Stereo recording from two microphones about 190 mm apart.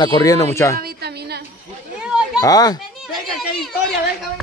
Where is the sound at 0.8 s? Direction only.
60° right (ahead or behind).